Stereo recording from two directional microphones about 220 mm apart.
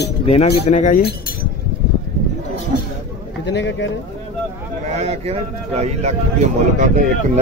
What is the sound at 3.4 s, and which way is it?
Speech, 55° left (ahead or behind).